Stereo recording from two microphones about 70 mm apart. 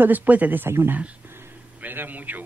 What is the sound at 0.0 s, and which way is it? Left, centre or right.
A man's voice, right.